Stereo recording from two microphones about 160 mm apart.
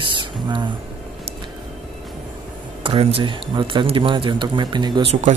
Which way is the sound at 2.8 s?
35° right (ahead or behind).